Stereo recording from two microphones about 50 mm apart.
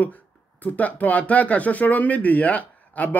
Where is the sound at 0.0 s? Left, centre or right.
Left.